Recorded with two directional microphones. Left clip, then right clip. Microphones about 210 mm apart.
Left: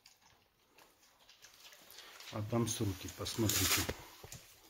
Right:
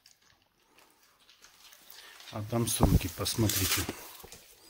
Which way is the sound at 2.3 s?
15° right (ahead or behind).